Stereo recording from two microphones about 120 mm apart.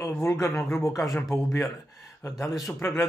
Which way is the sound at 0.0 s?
25° left (ahead or behind).